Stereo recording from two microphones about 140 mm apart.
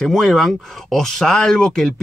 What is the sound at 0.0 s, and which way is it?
Speech, centre (ahead or behind).